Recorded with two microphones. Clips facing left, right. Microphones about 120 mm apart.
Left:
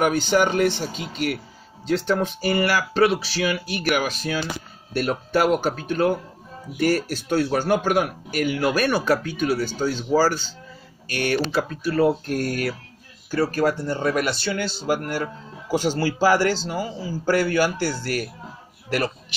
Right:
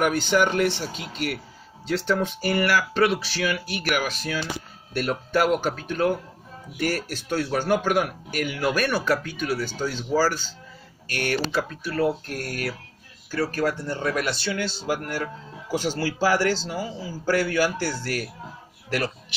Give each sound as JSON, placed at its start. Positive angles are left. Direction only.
{"t": 0.0, "sound": "speech", "side_deg": 25}
{"t": 12.1, "sound": "speech", "side_deg": 20}